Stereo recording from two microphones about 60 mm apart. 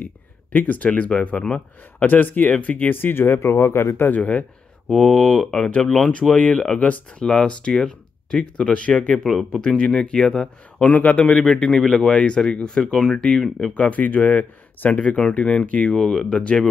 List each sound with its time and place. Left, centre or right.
0.0 s speech: left
2.0 s speech: left
4.2 s speech: left
4.8 s speech: centre
5.1 s a man's voice: centre
9.2 s speech: centre
9.6 s a man's voice: centre
10.8 s a man's voice: left
13.7 s speech: left